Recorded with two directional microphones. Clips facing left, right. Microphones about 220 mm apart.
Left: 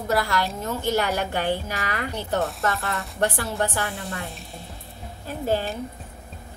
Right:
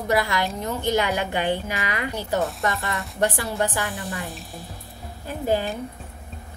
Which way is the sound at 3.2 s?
15° right (ahead or behind).